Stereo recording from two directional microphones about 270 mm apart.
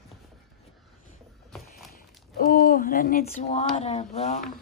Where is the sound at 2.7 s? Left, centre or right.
Left.